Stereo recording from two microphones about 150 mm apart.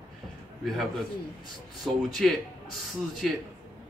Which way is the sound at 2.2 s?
Centre (ahead or behind).